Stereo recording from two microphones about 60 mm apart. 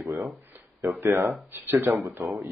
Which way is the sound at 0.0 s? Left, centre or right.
Right.